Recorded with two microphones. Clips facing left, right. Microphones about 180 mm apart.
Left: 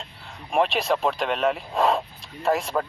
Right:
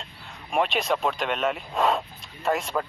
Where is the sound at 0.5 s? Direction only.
Centre (ahead or behind).